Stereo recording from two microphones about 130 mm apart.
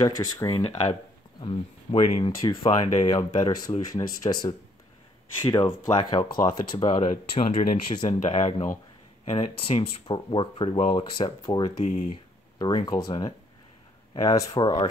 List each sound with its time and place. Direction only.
0.0 s speech: 25° left (ahead or behind)
1.4 s speech: 40° left (ahead or behind)
11.8 s speech: 70° left (ahead or behind)
12.1 s speech: 35° left (ahead or behind)